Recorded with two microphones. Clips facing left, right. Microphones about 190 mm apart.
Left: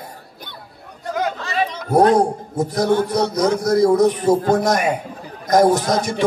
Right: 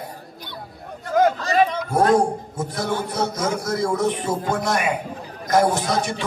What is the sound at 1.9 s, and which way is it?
A man's voice, 40° left (ahead or behind).